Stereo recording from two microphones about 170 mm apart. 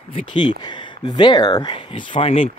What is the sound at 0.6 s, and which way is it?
Speech, 25° left (ahead or behind).